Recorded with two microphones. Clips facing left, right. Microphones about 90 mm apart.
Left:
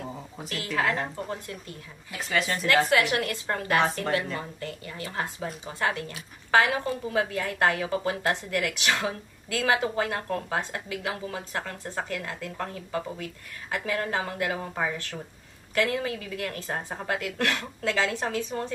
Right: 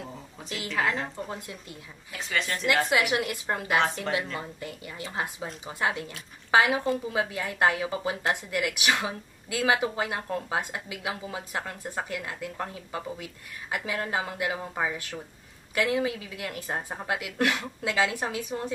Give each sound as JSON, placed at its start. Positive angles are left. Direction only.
{"t": 0.7, "sound": "a woman's voice", "side_deg": 0}
{"t": 2.9, "sound": "a woman's voice", "side_deg": -15}